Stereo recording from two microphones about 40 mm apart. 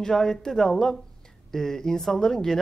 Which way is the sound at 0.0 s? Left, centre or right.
Centre.